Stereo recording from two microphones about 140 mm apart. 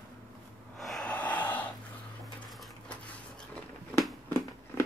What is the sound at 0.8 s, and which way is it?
Gasp, 5° left (ahead or behind).